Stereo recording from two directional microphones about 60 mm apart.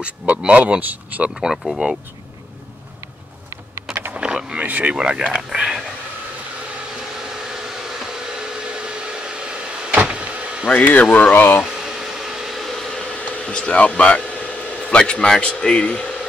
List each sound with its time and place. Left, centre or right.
0.3 s speech: right
1.3 s speech: centre
4.1 s power windows: centre
4.6 s speech: right
4.9 s speech: centre
7.2 s hair dryer: centre
10.7 s speech: left
11.6 s a sound: centre
13.4 s speech: centre